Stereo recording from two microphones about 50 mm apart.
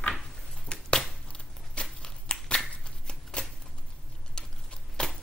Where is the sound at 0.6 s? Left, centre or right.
Left.